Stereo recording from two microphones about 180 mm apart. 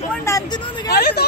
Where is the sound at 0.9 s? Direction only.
60° left (ahead or behind).